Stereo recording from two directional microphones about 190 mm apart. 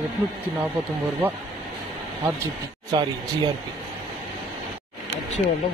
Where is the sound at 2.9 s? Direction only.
20° right (ahead or behind).